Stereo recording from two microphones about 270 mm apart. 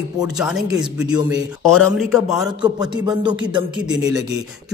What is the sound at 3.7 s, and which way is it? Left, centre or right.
Speech, centre.